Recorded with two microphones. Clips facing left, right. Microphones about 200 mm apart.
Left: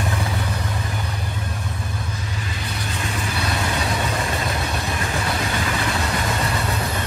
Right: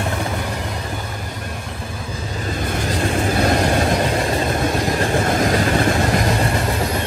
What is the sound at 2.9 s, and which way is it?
Vehicle, 45° right (ahead or behind).